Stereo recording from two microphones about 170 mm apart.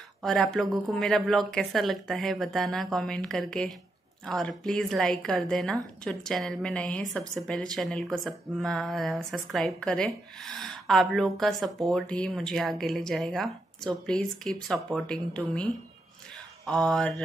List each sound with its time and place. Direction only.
0.2 s speech: centre (ahead or behind)